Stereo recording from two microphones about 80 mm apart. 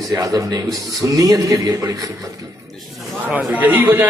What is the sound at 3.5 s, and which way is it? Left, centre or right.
Speech, right.